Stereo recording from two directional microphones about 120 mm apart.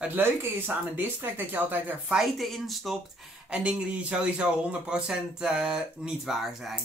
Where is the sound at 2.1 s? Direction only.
Centre (ahead or behind).